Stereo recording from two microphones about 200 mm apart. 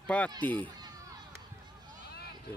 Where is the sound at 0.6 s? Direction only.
20° right (ahead or behind).